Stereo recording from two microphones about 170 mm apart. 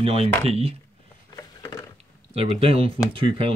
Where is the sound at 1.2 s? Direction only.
25° left (ahead or behind).